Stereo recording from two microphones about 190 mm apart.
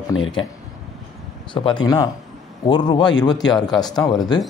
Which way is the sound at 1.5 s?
25° left (ahead or behind).